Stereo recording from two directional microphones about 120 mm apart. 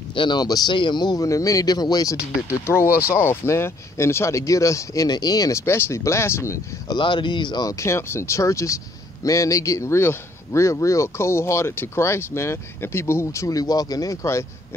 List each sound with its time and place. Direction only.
0.1 s speech: 40° left (ahead or behind)
3.1 s speech: 20° left (ahead or behind)
7.0 s speech: 40° left (ahead or behind); by 14.4 s 25° left (ahead or behind)